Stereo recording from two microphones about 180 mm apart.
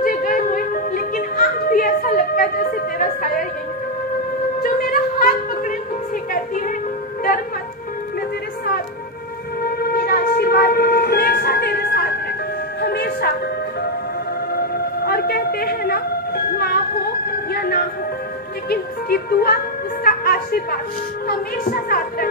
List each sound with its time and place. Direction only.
0.0 s music: 50° left (ahead or behind)
4.6 s music: 50° left (ahead or behind)
9.6 s a sound: 55° left (ahead or behind)
12.8 s music: 60° left (ahead or behind)
14.5 s music: 60° left (ahead or behind)
21.3 s a sound: 55° left (ahead or behind)